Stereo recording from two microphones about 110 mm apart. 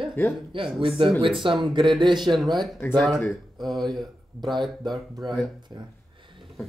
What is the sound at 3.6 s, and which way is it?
Speech, centre (ahead or behind).